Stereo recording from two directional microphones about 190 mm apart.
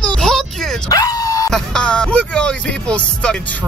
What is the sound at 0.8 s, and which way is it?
Dog, 20° left (ahead or behind).